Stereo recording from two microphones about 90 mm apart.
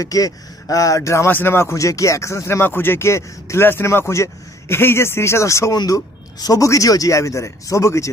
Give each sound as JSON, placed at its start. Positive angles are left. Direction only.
{"t": 0.0, "sound": "a man's voice", "side_deg": 40}
{"t": 5.8, "sound": "a man's voice", "side_deg": 45}